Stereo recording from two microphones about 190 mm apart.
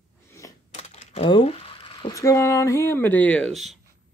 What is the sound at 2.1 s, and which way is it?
Speech, 15° left (ahead or behind).